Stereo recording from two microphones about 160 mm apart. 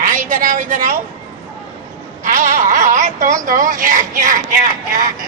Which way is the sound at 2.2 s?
55° right (ahead or behind).